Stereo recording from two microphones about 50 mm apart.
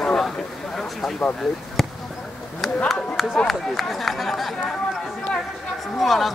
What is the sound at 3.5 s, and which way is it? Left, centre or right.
Speech, centre.